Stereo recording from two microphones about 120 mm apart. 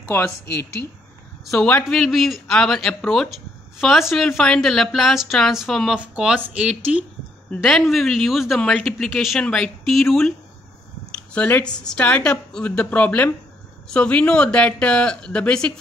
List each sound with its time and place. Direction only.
0.1 s a woman's voice: 20° left (ahead or behind)
1.4 s speech: centre (ahead or behind)
7.5 s speech: centre (ahead or behind)
11.1 s speech: 15° left (ahead or behind)